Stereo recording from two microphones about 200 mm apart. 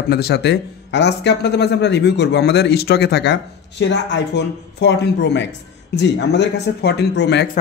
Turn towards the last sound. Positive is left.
turn(degrees=60)  # may be behind; listen again after turning